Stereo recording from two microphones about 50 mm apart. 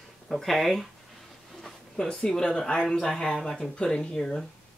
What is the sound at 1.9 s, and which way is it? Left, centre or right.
Speech, centre.